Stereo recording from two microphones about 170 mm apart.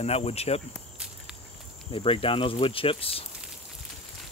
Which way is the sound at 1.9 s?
30° left (ahead or behind).